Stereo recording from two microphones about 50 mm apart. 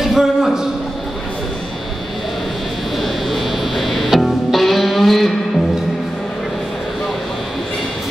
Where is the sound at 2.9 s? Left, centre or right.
Centre.